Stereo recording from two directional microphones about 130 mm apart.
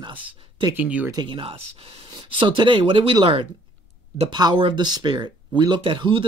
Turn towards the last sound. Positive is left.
turn(degrees=-40)  # may be behind; listen again after turning